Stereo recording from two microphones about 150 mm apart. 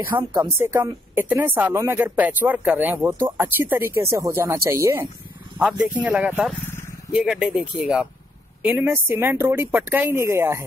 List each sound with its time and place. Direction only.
0.4 s speech: 20° right (ahead or behind)
5.6 s speech: 5° right (ahead or behind)